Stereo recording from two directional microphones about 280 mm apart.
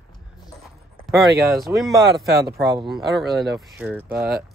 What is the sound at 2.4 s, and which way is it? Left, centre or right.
Speech, centre.